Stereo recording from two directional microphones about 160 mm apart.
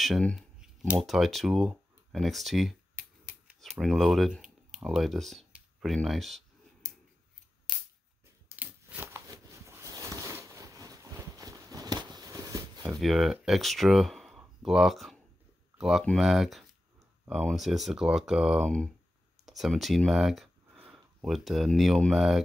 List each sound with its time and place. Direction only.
0.0 s speech: 5° left (ahead or behind)
8.5 s a sound: 15° right (ahead or behind)
13.0 s speech: centre (ahead or behind)